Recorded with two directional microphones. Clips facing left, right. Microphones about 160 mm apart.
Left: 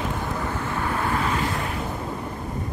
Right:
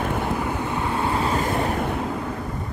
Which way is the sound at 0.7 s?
20° right (ahead or behind).